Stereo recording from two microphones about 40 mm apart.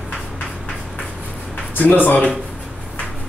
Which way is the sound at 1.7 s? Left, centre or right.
Left.